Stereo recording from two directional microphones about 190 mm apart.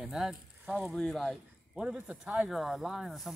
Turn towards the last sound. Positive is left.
turn(degrees=0)  # may be behind; listen again after turning